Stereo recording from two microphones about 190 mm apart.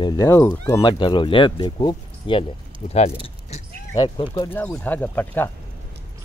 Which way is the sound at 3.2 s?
30° left (ahead or behind).